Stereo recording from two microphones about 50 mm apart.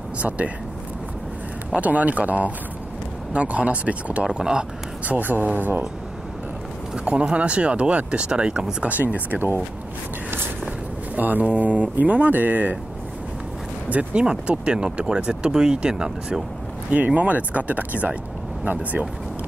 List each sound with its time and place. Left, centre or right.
1.8 s speech: right; by 4.6 s centre
5.0 s speech: right
7.1 s speech: right
8.8 s speech: right
11.1 s speech: right
13.8 s speech: right
14.2 s speech: centre
16.9 s speech: right